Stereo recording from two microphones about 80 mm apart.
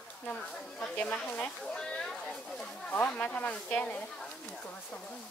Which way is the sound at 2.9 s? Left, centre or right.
Centre.